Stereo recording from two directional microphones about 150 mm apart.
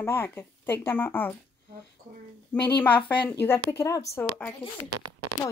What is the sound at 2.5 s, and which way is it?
Speech, 10° left (ahead or behind).